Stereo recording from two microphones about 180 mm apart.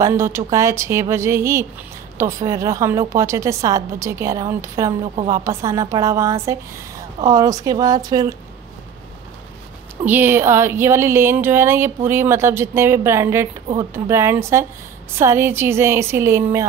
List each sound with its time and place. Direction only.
0.0 s speech: 15° right (ahead or behind)
10.0 s speech: 10° right (ahead or behind)